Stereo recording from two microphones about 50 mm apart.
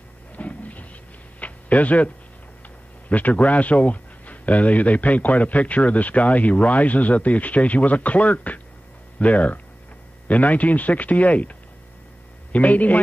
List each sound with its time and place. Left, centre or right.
0.4 s a sound: left
3.1 s speech: left
12.5 s speech: left